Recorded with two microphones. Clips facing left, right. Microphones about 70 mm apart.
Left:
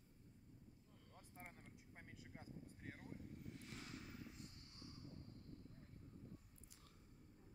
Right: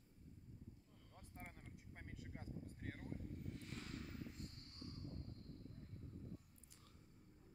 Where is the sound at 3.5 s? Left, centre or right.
Right.